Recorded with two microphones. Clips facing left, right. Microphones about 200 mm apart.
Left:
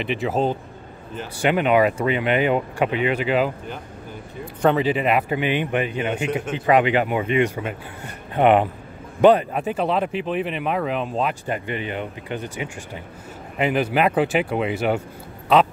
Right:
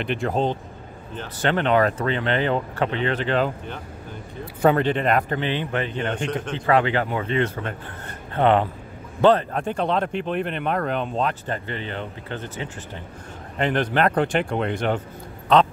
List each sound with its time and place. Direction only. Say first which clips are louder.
0.0 s speech: left 1 dB; centre (ahead or behind)